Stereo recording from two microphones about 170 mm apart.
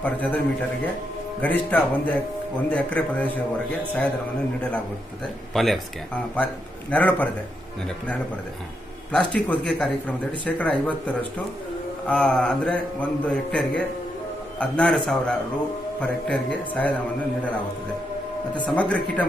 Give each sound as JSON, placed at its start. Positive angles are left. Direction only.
{"t": 0.0, "sound": "a man's voice", "side_deg": 10}
{"t": 1.4, "sound": "a man's voice", "side_deg": 10}
{"t": 9.1, "sound": "a man's voice", "side_deg": 5}
{"t": 18.7, "sound": "a man's voice", "side_deg": 5}